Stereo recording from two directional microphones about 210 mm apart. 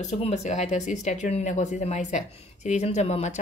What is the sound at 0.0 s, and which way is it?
Speech, 30° left (ahead or behind).